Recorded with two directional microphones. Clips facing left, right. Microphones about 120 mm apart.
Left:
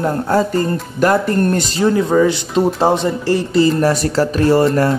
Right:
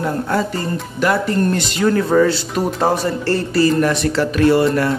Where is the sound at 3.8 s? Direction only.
40° left (ahead or behind).